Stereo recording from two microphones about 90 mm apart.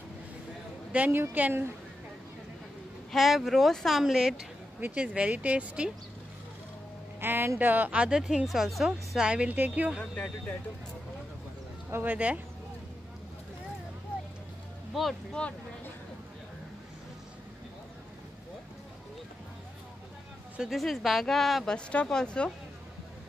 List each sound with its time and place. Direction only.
0.9 s speech: 20° right (ahead or behind)
3.1 s a woman's voice: centre (ahead or behind)
4.7 s speech: 15° right (ahead or behind)
7.2 s speech: 25° right (ahead or behind)
11.9 s speech: 20° right (ahead or behind)
15.4 s speech: 10° left (ahead or behind)
20.5 s a woman's voice: 5° right (ahead or behind)